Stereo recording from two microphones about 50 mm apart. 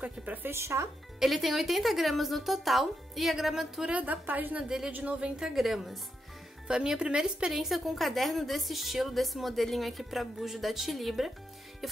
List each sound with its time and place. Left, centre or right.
0.0 s a woman's voice: right
0.5 s speech: right
1.2 s a woman's voice: centre
3.9 s a woman's voice: right
4.6 s a woman's voice: centre
6.7 s a woman's voice: centre
7.6 s a woman's voice: centre